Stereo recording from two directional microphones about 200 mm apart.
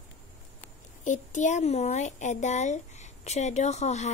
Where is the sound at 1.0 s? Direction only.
40° left (ahead or behind).